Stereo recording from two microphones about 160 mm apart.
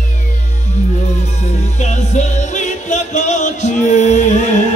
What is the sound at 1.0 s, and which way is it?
Music, 45° left (ahead or behind).